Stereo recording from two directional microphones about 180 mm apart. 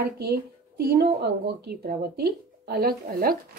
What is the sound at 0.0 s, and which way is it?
Speech, 60° right (ahead or behind).